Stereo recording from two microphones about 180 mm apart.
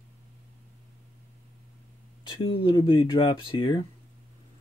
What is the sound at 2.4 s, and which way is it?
Speech, 30° left (ahead or behind).